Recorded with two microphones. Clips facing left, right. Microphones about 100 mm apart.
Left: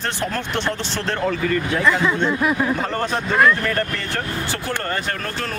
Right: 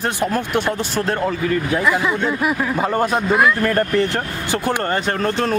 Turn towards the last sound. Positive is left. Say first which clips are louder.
# right 8 dB
turn(degrees=-25)  # may be behind; listen again after turning